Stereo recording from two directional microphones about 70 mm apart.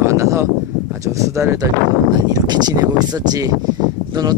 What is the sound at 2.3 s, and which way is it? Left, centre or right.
Speech, right.